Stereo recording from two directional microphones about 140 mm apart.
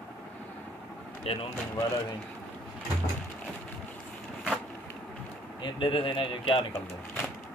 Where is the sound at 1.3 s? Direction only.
45° left (ahead or behind).